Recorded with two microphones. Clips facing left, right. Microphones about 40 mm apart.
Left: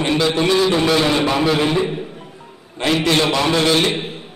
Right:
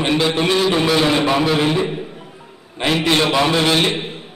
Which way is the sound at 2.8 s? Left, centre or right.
Centre.